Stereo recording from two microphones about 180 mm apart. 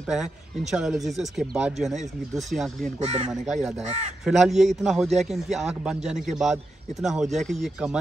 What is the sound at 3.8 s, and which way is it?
Speech, 35° right (ahead or behind).